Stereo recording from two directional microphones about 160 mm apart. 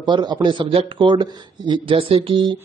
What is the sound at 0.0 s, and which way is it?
A man's voice, 25° right (ahead or behind).